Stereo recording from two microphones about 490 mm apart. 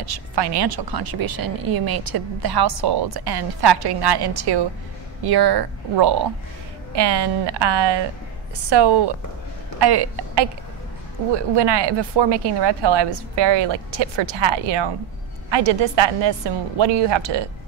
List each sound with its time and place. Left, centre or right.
0.0 s speech: right